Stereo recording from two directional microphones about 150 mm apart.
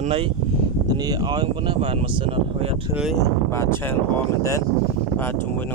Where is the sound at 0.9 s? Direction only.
25° right (ahead or behind).